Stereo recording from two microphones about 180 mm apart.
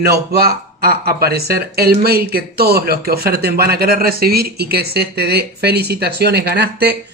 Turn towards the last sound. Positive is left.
turn(degrees=-60)  # may be behind; listen again after turning